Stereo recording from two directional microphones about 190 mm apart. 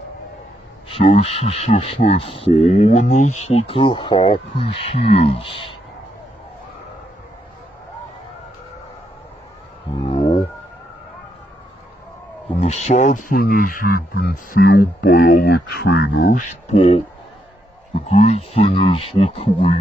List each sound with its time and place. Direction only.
0.8 s speech: 30° left (ahead or behind)
10.0 s a sound: 35° left (ahead or behind)
12.5 s speech: 35° left (ahead or behind); by 16.3 s 65° left (ahead or behind)
16.3 s speech: 40° left (ahead or behind)